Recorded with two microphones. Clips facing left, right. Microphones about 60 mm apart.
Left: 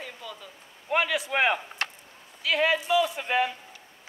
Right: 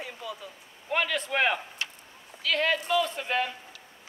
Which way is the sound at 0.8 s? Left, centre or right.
Centre.